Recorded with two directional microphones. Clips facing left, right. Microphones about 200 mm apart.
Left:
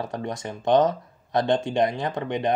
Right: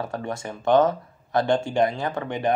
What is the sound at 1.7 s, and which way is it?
Speech, 20° left (ahead or behind).